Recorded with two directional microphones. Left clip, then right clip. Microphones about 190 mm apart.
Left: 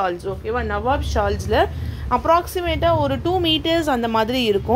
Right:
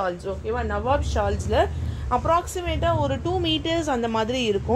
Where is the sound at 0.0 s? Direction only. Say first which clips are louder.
Left 4 dB; 45° left (ahead or behind).